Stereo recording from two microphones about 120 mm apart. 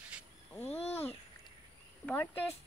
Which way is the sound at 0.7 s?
60° left (ahead or behind).